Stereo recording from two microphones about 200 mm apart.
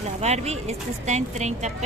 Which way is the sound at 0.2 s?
35° right (ahead or behind).